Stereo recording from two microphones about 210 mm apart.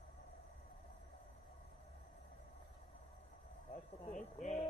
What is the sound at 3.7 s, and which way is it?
Speech, 30° left (ahead or behind).